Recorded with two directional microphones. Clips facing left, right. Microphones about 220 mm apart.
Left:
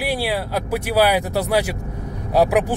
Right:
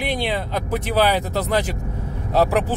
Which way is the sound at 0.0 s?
10° left (ahead or behind).